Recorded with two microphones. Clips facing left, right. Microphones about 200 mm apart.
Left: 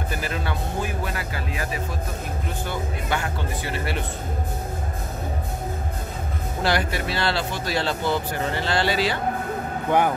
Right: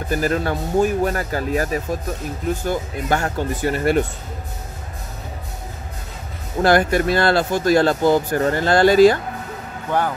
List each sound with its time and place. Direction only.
0.1 s speech: 45° right (ahead or behind)
6.6 s speech: 50° right (ahead or behind)
9.8 s speech: 15° left (ahead or behind)